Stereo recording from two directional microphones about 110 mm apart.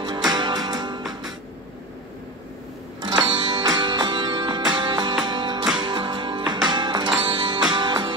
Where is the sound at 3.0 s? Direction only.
45° right (ahead or behind).